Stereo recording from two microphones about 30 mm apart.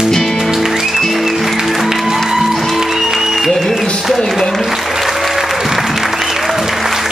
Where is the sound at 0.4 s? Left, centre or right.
Centre.